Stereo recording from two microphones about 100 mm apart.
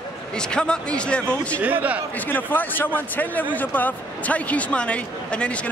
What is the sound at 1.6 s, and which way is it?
Speech, 15° right (ahead or behind).